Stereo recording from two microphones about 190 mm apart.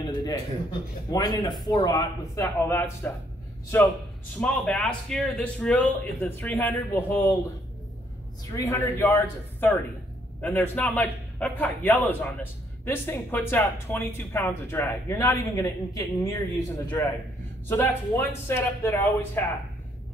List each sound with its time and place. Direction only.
1.1 s a man's voice: 20° left (ahead or behind)
8.5 s a man's voice: 15° left (ahead or behind)